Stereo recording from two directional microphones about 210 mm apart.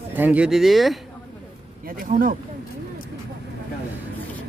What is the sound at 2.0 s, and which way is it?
Speech, 40° right (ahead or behind).